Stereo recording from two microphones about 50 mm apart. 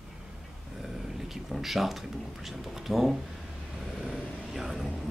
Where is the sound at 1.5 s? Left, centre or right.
Centre.